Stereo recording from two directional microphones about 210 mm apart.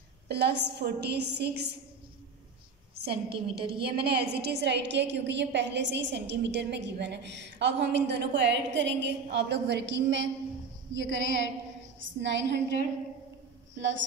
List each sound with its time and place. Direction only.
0.3 s a woman's voice: 50° right (ahead or behind)
3.1 s a woman's voice: 50° right (ahead or behind)